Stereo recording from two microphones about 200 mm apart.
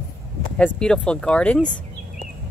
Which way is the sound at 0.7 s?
5° left (ahead or behind).